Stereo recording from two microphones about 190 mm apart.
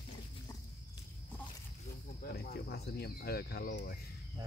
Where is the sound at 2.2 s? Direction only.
50° left (ahead or behind).